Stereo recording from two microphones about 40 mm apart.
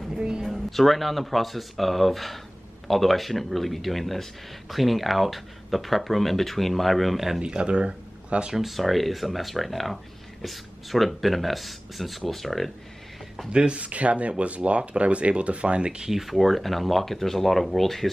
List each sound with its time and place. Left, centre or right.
0.7 s speech: centre
7.4 s speech: right
8.5 s speech: centre
13.5 s speech: right
16.1 s speech: centre